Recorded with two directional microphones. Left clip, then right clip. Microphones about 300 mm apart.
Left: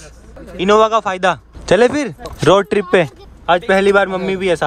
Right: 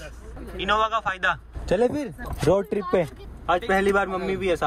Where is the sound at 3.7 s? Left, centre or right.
Left.